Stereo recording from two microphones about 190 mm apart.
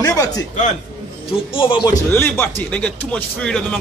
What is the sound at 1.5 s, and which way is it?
Speech, 25° left (ahead or behind).